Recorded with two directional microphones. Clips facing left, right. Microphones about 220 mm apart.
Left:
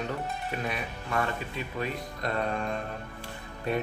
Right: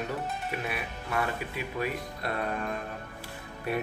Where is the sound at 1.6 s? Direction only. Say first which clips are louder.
Right 2 dB; 10° right (ahead or behind).